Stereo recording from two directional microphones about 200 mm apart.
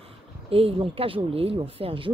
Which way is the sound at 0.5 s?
30° right (ahead or behind).